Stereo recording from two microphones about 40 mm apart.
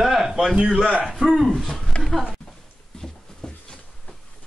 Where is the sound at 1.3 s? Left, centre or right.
Centre.